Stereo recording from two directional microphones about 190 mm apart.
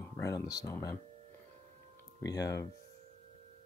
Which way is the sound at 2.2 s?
20° left (ahead or behind).